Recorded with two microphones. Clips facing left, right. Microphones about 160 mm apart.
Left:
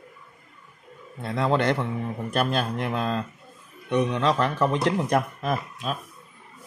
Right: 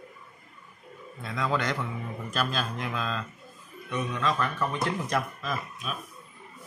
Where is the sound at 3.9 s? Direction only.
70° left (ahead or behind).